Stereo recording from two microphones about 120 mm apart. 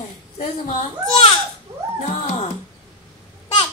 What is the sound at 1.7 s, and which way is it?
Music, 45° right (ahead or behind).